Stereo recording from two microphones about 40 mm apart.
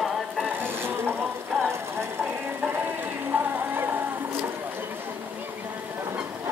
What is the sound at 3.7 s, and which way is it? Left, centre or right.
Music, right.